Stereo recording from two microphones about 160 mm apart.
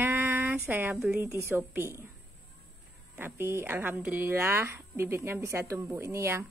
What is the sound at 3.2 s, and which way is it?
A woman's voice, 15° right (ahead or behind).